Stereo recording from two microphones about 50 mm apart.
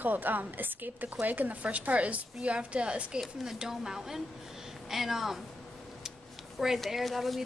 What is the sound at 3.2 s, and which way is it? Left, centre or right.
Speech, centre.